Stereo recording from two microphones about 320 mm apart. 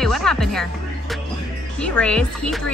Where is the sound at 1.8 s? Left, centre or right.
Centre.